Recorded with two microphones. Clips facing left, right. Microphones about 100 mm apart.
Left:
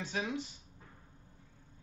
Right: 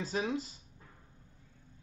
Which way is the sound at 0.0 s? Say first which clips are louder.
Right 3 dB; 30° right (ahead or behind).